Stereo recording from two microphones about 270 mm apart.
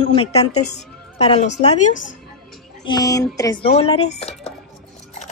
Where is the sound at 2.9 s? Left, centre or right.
Centre.